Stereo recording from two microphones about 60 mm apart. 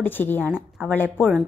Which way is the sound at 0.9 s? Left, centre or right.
Left.